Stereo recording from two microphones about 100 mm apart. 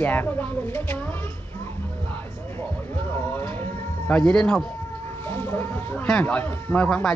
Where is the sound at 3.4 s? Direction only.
20° left (ahead or behind).